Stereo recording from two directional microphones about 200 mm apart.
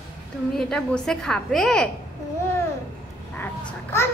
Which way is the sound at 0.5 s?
5° left (ahead or behind).